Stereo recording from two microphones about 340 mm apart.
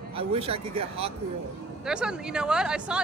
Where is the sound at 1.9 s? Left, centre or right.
Centre.